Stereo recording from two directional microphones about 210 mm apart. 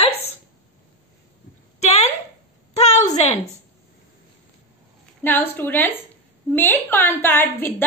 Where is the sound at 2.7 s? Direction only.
30° left (ahead or behind).